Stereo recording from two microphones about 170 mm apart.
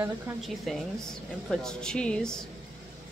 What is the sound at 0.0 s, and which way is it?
Speech, centre (ahead or behind).